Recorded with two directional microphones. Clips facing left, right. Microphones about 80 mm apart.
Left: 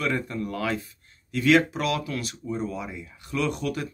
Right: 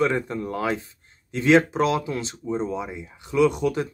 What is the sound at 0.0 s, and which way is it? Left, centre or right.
Speech, right.